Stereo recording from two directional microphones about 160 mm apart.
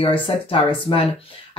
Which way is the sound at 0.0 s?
35° left (ahead or behind).